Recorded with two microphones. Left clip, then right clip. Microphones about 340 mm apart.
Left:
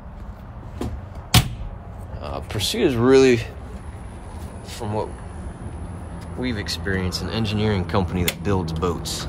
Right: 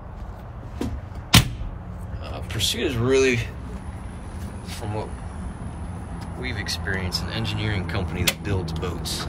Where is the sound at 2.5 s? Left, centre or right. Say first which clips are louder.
Even; left.